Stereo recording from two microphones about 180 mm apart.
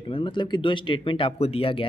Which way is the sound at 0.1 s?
25° left (ahead or behind).